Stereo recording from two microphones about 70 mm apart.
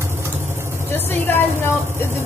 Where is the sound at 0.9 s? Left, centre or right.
Left.